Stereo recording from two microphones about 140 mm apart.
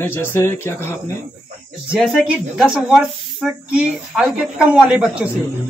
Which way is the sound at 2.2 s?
5° right (ahead or behind).